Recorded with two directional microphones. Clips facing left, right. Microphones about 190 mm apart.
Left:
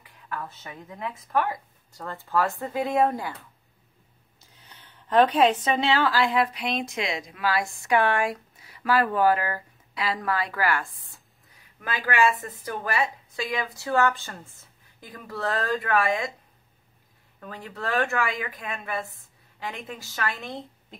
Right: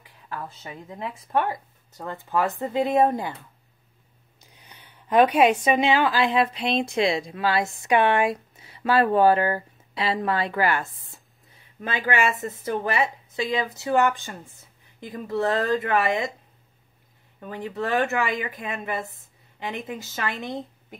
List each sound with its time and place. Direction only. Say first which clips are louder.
0.3 s speech: right 1 dB; 30° right (ahead or behind)
4.4 s a woman's voice: right 2 dB; 15° right (ahead or behind)
17.4 s speech: right 6 dB; 20° right (ahead or behind)